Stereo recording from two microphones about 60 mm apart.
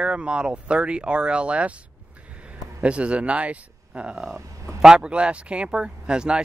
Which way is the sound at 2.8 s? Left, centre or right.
Centre.